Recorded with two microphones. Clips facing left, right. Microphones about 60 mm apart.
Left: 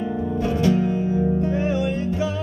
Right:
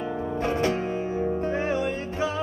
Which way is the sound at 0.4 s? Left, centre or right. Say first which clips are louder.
Left 5 dB; right.